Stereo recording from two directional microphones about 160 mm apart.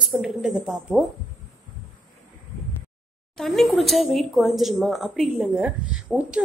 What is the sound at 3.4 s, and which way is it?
Speech, centre (ahead or behind).